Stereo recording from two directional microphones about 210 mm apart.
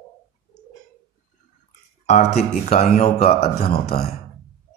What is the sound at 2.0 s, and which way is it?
Speech, 30° left (ahead or behind).